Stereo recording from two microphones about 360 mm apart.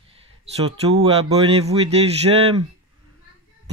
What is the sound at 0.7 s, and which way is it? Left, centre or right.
Speech, centre.